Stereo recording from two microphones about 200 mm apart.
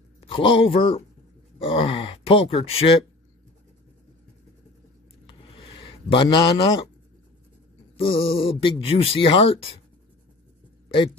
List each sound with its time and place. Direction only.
0.2 s speech: 25° left (ahead or behind)
5.2 s a sound: 25° left (ahead or behind)
8.0 s speech: 25° left (ahead or behind)